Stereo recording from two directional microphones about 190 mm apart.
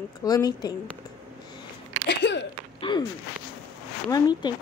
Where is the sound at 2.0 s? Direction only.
65° left (ahead or behind).